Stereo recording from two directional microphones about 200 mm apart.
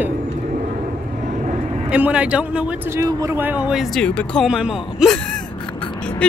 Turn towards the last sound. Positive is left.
turn(degrees=5)  # may be behind; listen again after turning